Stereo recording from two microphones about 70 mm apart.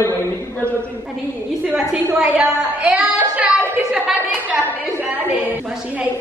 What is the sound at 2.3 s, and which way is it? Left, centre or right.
A woman's voice, centre.